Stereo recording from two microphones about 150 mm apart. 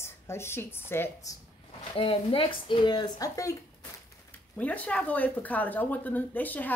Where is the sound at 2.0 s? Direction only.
35° left (ahead or behind).